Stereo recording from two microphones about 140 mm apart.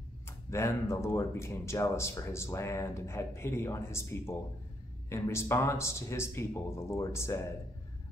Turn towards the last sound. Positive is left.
turn(degrees=20)  # may be behind; listen again after turning